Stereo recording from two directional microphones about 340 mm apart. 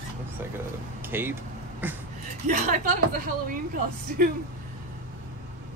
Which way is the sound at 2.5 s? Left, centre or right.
Right.